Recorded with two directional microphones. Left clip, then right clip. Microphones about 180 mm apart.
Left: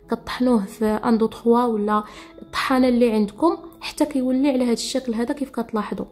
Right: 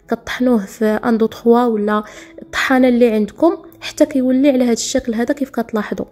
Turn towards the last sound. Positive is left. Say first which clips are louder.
# right 5 dB
turn(degrees=-25)  # may be behind; listen again after turning